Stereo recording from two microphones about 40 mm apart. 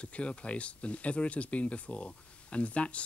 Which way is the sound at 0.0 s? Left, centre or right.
Left.